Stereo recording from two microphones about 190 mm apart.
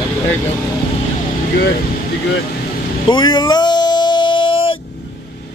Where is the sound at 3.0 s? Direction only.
25° left (ahead or behind).